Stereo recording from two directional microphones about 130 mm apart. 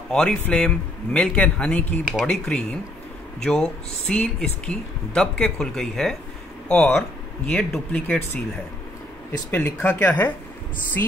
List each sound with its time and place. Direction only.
0.1 s a man's voice: 5° left (ahead or behind)
9.5 s a man's voice: 15° left (ahead or behind)